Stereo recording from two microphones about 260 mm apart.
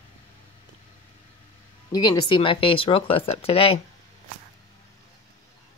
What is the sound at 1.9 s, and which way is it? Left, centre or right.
Speech, centre.